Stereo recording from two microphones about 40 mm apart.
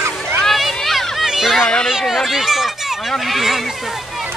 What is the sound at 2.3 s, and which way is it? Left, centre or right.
Run, centre.